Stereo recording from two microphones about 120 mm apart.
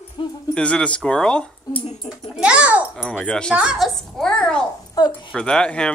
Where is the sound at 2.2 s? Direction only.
5° right (ahead or behind).